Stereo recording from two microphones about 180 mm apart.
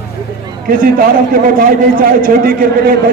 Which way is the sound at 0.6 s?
55° right (ahead or behind).